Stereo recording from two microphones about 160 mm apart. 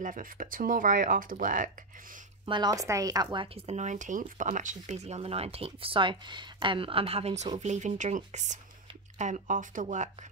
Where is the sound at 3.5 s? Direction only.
45° right (ahead or behind).